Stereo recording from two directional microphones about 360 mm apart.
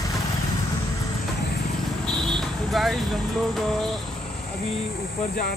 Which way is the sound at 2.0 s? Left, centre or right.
Centre.